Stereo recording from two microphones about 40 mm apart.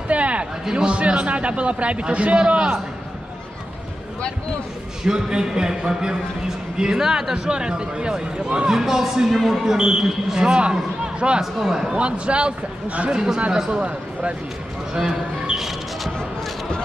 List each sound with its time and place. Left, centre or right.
0.1 s a sound: right
0.7 s a man's voice: centre
5.0 s a man's voice: centre
8.7 s speech: centre
9.8 s a man's voice: centre
11.6 s speech: centre
12.0 s a man's voice: right
13.1 s speech: centre
13.7 s a man's voice: right
15.0 s a man's voice: centre